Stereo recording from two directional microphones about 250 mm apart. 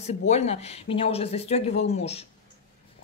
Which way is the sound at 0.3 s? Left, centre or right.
Left.